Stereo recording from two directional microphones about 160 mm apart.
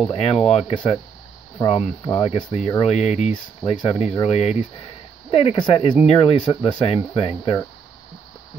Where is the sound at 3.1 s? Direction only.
45° left (ahead or behind).